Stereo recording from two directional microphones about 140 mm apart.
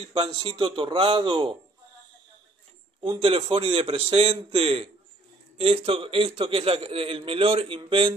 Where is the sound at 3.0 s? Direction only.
40° right (ahead or behind).